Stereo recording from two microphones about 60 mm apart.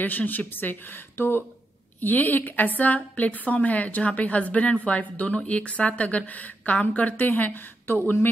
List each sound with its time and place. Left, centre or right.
0.0 s a woman's voice: left